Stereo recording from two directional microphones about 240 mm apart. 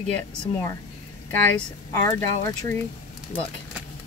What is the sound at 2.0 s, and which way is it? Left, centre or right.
Speech, centre.